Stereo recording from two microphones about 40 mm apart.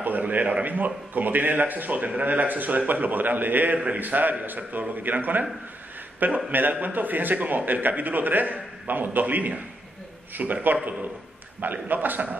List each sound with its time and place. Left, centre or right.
0.0 s a man's voice: right